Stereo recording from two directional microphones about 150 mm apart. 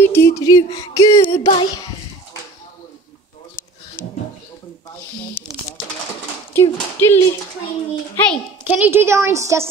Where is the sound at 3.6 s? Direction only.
65° left (ahead or behind).